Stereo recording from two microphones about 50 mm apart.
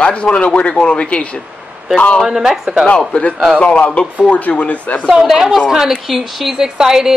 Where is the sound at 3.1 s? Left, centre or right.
Left.